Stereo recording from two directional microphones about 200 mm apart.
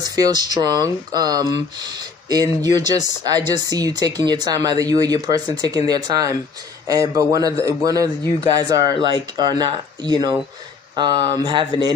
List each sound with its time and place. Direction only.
0.0 s speech: 20° right (ahead or behind)